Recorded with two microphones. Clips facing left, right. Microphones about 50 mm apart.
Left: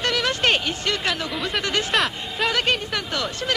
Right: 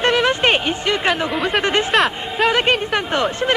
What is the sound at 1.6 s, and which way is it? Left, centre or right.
Speech, right.